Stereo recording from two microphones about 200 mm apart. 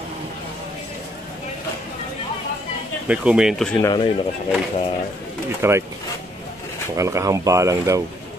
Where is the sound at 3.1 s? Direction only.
5° right (ahead or behind).